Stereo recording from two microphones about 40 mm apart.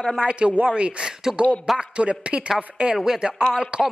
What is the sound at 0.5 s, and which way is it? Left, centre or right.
Speech, right.